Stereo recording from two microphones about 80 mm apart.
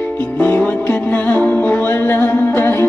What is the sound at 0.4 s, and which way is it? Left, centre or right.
Music, left.